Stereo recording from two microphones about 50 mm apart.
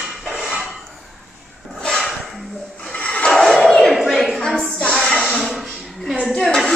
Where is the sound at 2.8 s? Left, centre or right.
Centre.